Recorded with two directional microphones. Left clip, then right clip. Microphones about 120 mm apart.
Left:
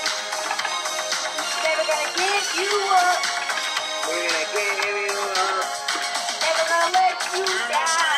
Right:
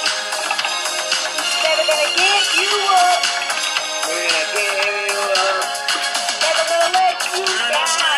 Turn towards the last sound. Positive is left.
turn(degrees=-25)  # may be behind; listen again after turning